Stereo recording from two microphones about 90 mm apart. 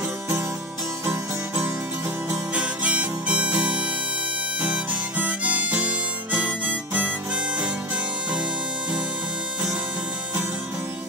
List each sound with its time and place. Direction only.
1.0 s music: 15° right (ahead or behind)
2.5 s harmonica: 15° right (ahead or behind)